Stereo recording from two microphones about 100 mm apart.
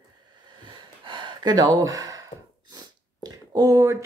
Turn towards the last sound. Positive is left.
turn(degrees=-35)  # may be behind; listen again after turning